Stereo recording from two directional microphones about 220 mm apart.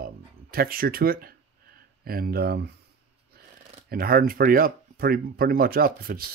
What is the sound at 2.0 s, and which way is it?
Speech, 40° right (ahead or behind).